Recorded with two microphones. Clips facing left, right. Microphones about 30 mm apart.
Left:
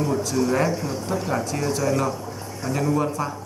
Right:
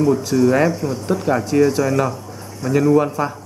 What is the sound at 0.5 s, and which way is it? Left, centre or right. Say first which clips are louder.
Speech: right 6 dB; centre.